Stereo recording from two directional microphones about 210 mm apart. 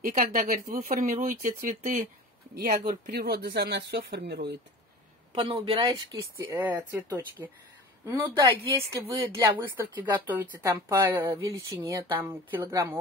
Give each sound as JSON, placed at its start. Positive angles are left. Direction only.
{"t": 0.0, "sound": "speech", "side_deg": -40}
{"t": 5.3, "sound": "speech", "side_deg": -25}
{"t": 10.5, "sound": "speech", "side_deg": -15}